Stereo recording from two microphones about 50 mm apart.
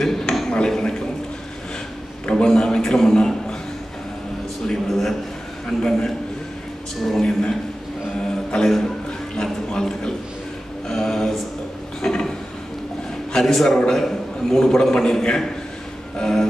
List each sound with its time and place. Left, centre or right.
0.0 s a sound: centre
0.5 s a man's voice: centre
2.2 s a man's voice: centre
4.6 s a man's voice: centre
8.6 s a sound: centre
13.3 s a man's voice: centre